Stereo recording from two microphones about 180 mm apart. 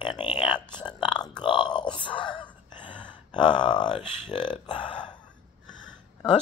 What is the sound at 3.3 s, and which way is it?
Speech, 25° left (ahead or behind).